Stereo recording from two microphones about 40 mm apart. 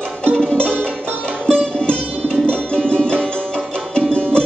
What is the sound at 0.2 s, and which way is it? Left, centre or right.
Music, left.